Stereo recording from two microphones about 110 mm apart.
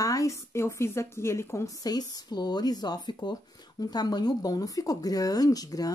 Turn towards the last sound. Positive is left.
turn(degrees=35)  # may be behind; listen again after turning